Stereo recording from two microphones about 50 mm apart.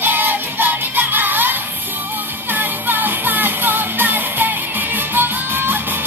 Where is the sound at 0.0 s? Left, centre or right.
Right.